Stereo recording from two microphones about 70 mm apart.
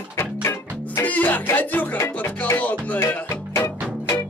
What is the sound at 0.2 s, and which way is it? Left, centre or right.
Music, left.